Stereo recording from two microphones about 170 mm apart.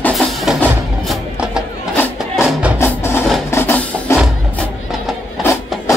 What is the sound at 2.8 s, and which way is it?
Music, 15° left (ahead or behind).